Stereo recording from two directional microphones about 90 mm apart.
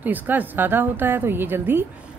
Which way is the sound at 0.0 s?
20° right (ahead or behind).